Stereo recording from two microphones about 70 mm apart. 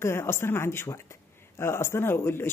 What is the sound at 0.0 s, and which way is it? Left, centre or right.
Speech, left.